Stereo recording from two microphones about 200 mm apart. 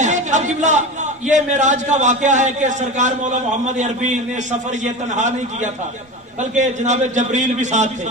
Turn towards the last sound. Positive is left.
turn(degrees=-35)  # may be behind; listen again after turning